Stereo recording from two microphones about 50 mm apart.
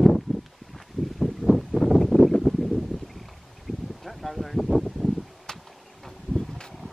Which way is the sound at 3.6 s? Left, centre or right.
Centre.